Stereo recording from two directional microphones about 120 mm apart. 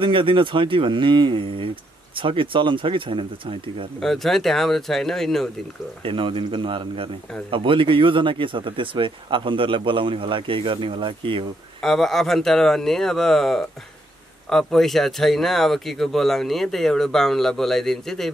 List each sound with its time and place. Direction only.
0.0 s speech: 45° right (ahead or behind)
4.0 s speech: centre (ahead or behind)
6.0 s speech: 45° right (ahead or behind)
11.8 s speech: 5° left (ahead or behind)